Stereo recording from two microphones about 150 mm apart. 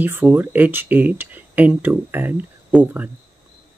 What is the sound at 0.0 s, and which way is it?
Speech, 15° right (ahead or behind).